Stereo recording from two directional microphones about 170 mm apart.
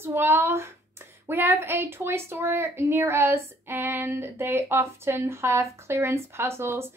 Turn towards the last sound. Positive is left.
turn(degrees=-15)  # may be behind; listen again after turning